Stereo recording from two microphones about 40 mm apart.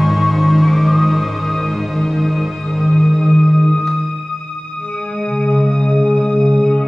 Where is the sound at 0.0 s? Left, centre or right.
Centre.